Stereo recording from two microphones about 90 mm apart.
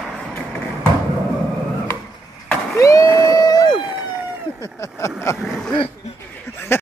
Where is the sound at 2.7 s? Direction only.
35° left (ahead or behind).